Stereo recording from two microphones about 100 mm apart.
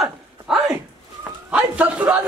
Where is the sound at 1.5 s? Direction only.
15° right (ahead or behind).